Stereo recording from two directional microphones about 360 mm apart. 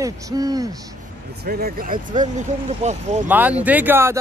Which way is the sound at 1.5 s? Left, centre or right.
Right.